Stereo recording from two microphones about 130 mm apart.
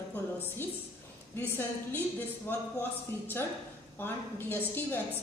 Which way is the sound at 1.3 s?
15° left (ahead or behind).